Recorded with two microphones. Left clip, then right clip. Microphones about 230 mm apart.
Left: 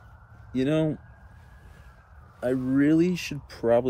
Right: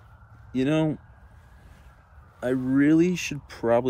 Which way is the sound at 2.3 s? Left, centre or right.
Centre.